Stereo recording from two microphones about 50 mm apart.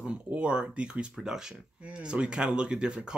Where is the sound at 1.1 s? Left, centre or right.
Centre.